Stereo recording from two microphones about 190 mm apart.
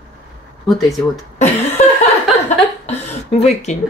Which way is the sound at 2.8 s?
35° left (ahead or behind).